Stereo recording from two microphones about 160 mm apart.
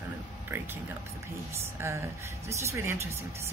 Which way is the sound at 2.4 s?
15° right (ahead or behind).